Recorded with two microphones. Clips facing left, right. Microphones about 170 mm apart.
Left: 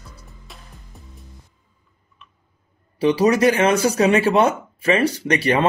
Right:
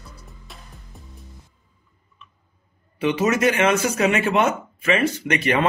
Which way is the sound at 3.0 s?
35° left (ahead or behind).